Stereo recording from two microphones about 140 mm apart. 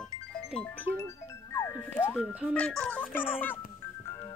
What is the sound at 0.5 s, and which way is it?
Speech, 10° left (ahead or behind).